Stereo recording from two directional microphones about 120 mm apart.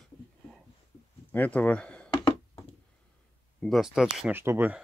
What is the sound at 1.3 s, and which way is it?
Speech, 15° left (ahead or behind).